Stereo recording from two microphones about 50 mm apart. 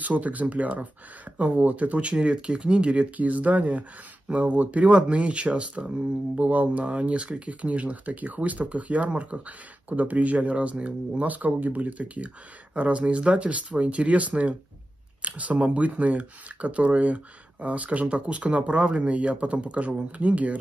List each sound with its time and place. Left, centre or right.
0.0 s speech: right